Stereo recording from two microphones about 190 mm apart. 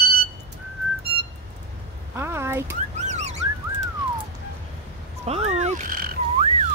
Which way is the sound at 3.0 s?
35° right (ahead or behind).